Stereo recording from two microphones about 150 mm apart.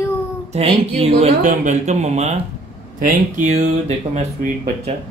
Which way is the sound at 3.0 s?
60° right (ahead or behind).